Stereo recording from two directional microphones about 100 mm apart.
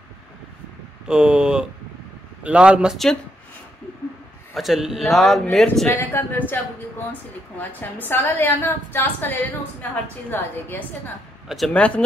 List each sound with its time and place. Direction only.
1.0 s speech: 10° right (ahead or behind)
4.6 s speech: centre (ahead or behind)
5.9 s a woman's voice: 20° left (ahead or behind)
11.4 s speech: centre (ahead or behind)
11.7 s speech: 10° left (ahead or behind)